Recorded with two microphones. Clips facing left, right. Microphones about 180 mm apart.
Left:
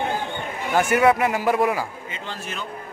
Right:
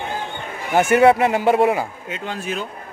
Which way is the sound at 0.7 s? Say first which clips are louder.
Right 4 dB; 25° right (ahead or behind).